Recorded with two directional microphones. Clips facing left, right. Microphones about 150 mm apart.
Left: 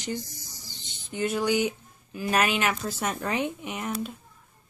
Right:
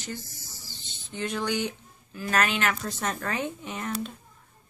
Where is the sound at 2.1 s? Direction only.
10° left (ahead or behind).